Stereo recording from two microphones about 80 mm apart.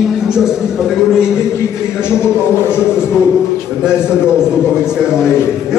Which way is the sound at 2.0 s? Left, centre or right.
Left.